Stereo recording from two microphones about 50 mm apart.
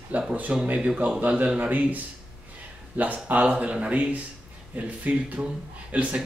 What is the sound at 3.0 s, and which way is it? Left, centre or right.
Speech, right.